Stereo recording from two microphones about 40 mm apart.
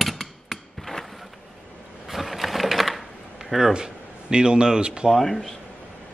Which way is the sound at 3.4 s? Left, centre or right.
Centre.